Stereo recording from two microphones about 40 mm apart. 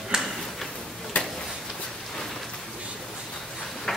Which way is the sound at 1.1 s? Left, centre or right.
Left.